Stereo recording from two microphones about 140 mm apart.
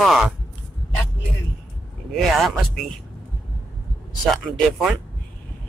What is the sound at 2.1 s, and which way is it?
Speech, centre (ahead or behind).